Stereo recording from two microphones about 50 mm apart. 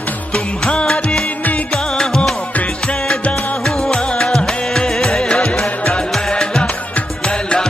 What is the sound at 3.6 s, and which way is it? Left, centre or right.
Music, centre.